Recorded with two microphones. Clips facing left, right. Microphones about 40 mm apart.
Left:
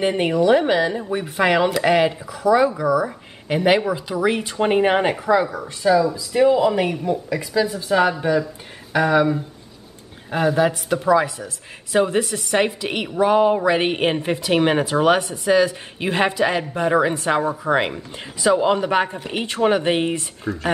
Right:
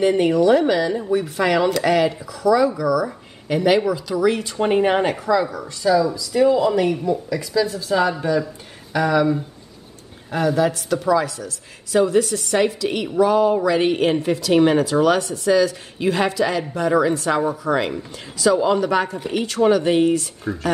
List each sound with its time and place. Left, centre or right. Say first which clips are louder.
0.0 s a woman's voice: right 2 dB; left
20.5 s speech: left 1 dB; centre